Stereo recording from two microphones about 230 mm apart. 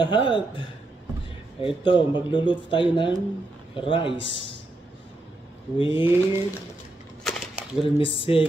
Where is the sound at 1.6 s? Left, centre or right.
Left.